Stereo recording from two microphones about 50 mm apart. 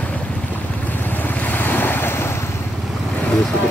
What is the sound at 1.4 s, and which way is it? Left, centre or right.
Waves, left.